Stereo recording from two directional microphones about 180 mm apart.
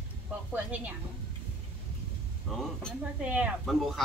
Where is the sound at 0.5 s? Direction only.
10° right (ahead or behind).